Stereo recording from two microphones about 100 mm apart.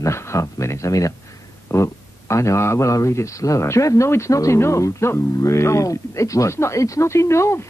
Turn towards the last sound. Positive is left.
turn(degrees=25)  # may be behind; listen again after turning